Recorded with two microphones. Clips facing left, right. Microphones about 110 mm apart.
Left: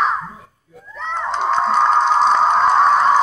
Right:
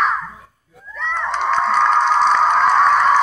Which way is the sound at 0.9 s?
30° left (ahead or behind).